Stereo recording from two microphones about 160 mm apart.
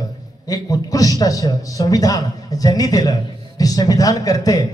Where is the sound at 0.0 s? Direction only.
20° left (ahead or behind).